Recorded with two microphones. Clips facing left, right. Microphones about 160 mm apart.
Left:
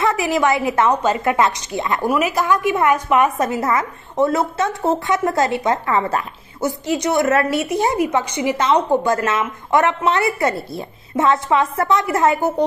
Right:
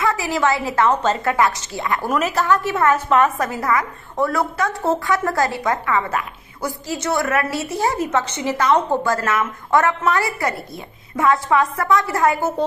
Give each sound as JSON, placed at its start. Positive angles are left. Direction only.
{"t": 0.0, "sound": "a woman's voice", "side_deg": 20}